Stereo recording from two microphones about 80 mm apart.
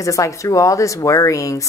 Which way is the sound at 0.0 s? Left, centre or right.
Left.